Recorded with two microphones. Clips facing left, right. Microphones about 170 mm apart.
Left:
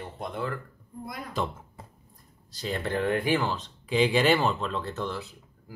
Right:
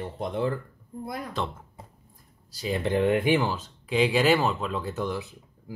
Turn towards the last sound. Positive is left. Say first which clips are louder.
# right 3 dB
turn(degrees=-15)  # may be behind; listen again after turning